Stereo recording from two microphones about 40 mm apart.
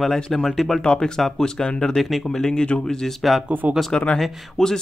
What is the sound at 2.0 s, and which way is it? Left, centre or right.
Speech, centre.